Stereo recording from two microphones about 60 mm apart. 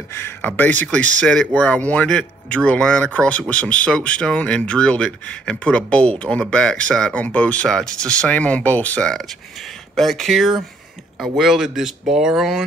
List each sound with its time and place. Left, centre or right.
0.1 s a sound: left
0.5 s speech: left
1.2 s speech: centre
1.5 s speech: left
9.0 s speech: centre